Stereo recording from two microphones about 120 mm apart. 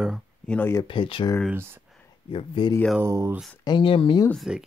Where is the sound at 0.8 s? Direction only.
45° left (ahead or behind).